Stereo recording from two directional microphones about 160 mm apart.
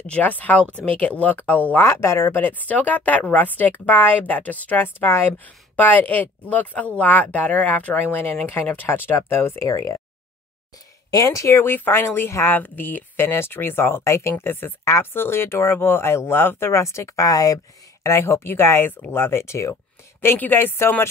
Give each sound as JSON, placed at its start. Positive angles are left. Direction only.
{"t": 0.0, "sound": "speech", "side_deg": 10}
{"t": 11.1, "sound": "speech", "side_deg": 20}